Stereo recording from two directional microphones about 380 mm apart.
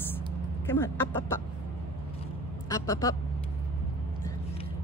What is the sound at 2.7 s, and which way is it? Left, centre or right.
Speech, centre.